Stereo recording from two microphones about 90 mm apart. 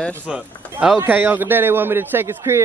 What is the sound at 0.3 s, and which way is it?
A man's voice, 15° right (ahead or behind).